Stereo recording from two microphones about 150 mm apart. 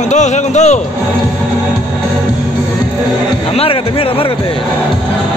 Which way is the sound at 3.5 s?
40° left (ahead or behind).